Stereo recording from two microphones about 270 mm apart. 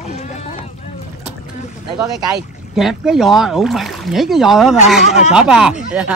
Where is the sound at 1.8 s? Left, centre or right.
Centre.